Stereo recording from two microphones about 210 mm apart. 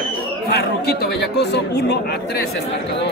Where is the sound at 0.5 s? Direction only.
50° left (ahead or behind).